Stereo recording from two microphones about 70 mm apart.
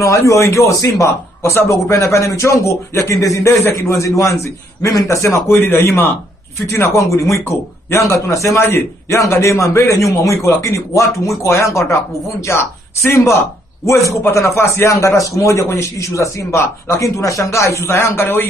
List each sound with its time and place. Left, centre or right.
0.0 s a man's voice: left
1.5 s a man's voice: left
5.3 s a man's voice: left